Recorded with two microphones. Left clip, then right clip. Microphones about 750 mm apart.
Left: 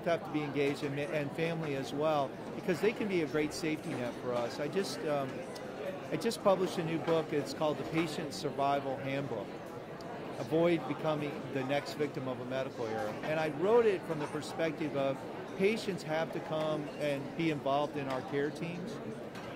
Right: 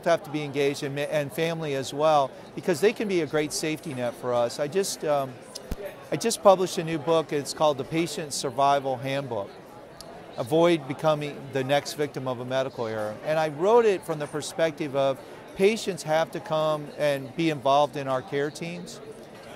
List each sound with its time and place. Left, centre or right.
0.0 s speech: right
10.5 s speech: right